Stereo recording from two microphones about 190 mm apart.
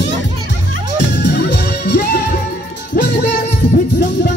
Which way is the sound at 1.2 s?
65° left (ahead or behind).